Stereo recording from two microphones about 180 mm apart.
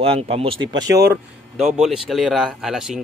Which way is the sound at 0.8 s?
15° right (ahead or behind).